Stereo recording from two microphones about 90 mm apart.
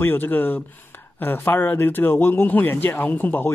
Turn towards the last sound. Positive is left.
turn(degrees=20)  # may be behind; listen again after turning